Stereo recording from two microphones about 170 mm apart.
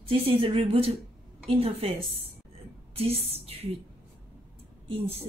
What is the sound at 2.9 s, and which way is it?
Speech, 35° right (ahead or behind).